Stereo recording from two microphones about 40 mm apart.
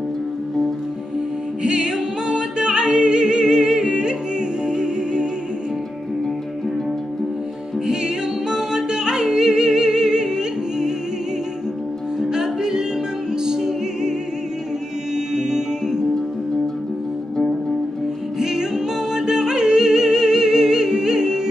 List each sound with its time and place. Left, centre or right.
1.6 s music: centre
7.8 s music: centre
12.2 s music: centre
15.1 s music: centre
18.4 s music: centre